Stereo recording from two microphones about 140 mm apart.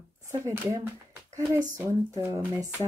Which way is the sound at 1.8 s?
15° right (ahead or behind).